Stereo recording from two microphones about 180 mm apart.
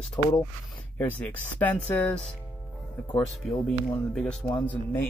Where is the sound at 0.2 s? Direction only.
25° left (ahead or behind).